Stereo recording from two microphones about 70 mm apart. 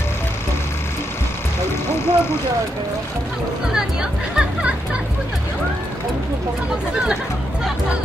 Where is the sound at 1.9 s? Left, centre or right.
Left.